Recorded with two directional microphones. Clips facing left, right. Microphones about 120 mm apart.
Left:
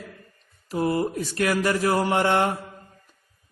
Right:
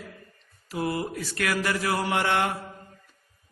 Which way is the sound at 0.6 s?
30° left (ahead or behind).